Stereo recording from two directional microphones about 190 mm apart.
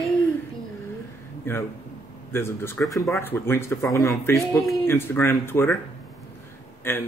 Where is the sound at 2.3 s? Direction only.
10° left (ahead or behind).